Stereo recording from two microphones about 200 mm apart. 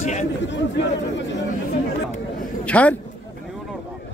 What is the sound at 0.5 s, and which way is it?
Speech, 60° left (ahead or behind).